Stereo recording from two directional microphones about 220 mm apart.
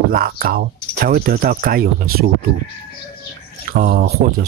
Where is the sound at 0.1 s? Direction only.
40° right (ahead or behind).